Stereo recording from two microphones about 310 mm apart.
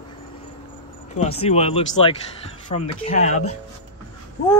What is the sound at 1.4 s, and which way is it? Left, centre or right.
Speech, centre.